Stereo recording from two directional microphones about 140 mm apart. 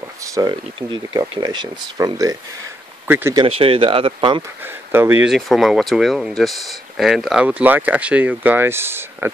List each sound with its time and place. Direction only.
0.2 s speech: 25° right (ahead or behind)
3.1 s speech: 15° right (ahead or behind)
3.3 s speech: 40° right (ahead or behind)
4.4 s speech: 15° right (ahead or behind)
5.3 s speech: centre (ahead or behind); by 9.3 s 15° right (ahead or behind)